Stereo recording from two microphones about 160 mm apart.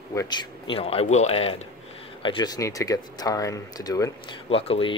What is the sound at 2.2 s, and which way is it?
Speech, 25° left (ahead or behind).